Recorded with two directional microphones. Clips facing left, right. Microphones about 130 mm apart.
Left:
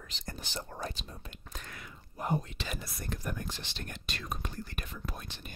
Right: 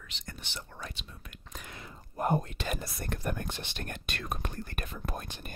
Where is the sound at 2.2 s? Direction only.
50° right (ahead or behind).